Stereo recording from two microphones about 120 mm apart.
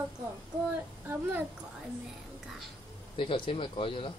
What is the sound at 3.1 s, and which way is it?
Speech, 45° left (ahead or behind).